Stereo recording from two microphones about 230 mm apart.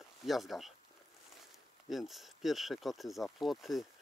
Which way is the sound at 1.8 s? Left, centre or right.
Centre.